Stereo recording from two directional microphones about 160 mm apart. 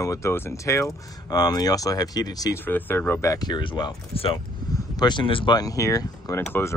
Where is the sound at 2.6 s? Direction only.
10° left (ahead or behind).